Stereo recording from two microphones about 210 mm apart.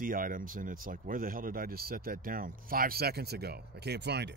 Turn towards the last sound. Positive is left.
turn(degrees=-55)  # may be behind; listen again after turning